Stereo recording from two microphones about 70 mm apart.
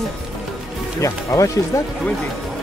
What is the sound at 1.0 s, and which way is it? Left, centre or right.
Speech, left.